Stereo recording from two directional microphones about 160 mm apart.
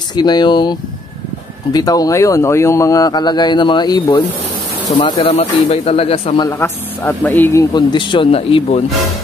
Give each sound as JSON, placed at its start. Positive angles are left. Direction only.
{"t": 0.1, "sound": "a man's voice", "side_deg": 25}
{"t": 6.3, "sound": "a man's voice", "side_deg": 25}
{"t": 7.3, "sound": "speech", "side_deg": 10}
{"t": 7.7, "sound": "speech", "side_deg": 30}